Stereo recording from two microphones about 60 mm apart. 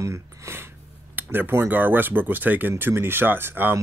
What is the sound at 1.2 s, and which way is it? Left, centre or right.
Speech, right.